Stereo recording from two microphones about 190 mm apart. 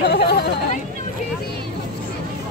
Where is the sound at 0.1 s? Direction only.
60° left (ahead or behind).